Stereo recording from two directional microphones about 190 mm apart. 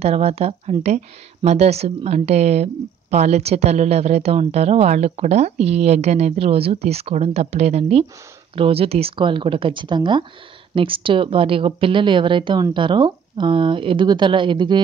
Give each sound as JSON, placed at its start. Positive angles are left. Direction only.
{"t": 0.0, "sound": "a woman's voice", "side_deg": -35}